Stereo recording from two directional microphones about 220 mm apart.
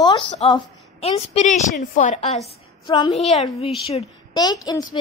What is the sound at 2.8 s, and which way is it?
A woman's voice, 20° left (ahead or behind).